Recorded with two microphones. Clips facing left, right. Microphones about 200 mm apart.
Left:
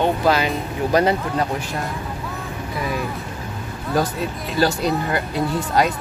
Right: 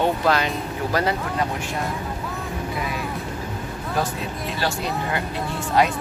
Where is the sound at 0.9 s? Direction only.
20° left (ahead or behind).